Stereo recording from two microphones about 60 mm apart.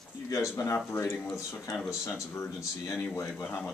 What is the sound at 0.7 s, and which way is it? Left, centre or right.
Speech, left.